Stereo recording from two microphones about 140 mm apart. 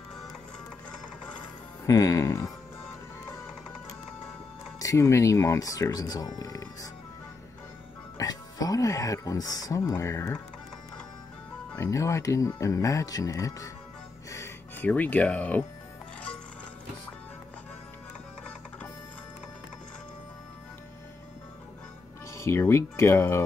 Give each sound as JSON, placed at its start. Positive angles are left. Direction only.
{"t": 1.9, "sound": "speech", "side_deg": 25}
{"t": 4.7, "sound": "speech", "side_deg": 20}
{"t": 8.2, "sound": "speech", "side_deg": 25}
{"t": 11.7, "sound": "speech", "side_deg": 20}
{"t": 14.3, "sound": "music", "side_deg": 20}
{"t": 14.9, "sound": "speech", "side_deg": 10}
{"t": 22.3, "sound": "speech", "side_deg": 20}